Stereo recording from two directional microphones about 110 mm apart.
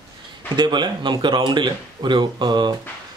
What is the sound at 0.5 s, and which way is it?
Speech, 45° right (ahead or behind).